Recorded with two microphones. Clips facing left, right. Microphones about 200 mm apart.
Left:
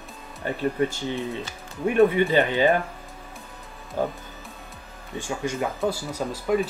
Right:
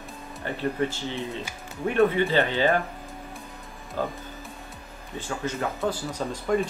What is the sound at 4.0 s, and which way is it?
Speech, 15° left (ahead or behind).